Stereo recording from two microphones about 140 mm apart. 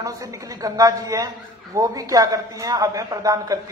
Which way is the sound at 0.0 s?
25° right (ahead or behind).